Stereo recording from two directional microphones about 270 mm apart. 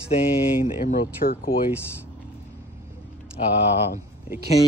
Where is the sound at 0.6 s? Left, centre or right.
Left.